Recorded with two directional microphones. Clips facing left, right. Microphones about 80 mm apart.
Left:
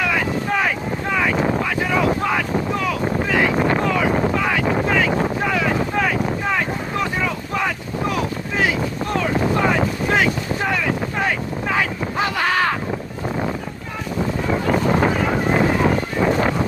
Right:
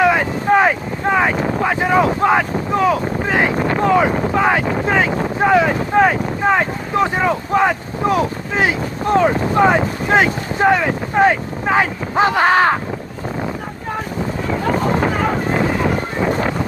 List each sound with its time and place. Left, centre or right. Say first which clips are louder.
0.0 s boat: right 6 dB; right
3.9 s speech: right 4 dB; right